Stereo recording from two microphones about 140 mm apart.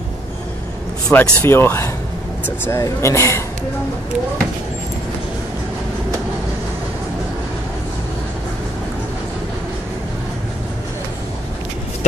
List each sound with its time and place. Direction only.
1.0 s speech: 5° left (ahead or behind)
1.4 s speech: 15° left (ahead or behind)